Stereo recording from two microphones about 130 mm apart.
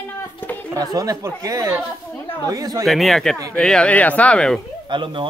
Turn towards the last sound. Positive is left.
turn(degrees=-40)  # may be behind; listen again after turning